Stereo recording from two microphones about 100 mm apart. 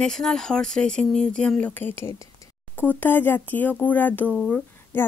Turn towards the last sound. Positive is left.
turn(degrees=15)  # may be behind; listen again after turning